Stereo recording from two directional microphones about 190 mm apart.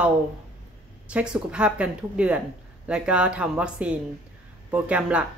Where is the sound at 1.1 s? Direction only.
5° right (ahead or behind).